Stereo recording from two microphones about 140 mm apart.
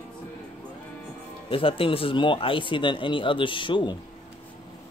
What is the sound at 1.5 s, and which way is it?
Speech, 40° left (ahead or behind).